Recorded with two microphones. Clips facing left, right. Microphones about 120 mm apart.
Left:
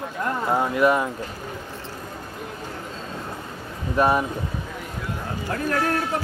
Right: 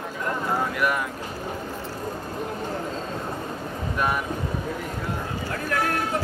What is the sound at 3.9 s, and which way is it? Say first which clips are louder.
Speech: left 7 dB; 35° left (ahead or behind).